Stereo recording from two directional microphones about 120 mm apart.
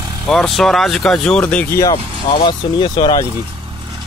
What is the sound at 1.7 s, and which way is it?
Speech, 25° left (ahead or behind).